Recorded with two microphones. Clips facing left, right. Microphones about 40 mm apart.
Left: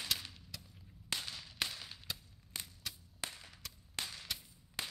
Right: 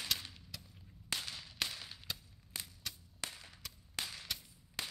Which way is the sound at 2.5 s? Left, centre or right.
Left.